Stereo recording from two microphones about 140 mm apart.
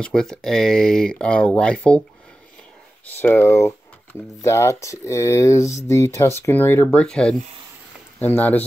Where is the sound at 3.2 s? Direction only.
15° left (ahead or behind).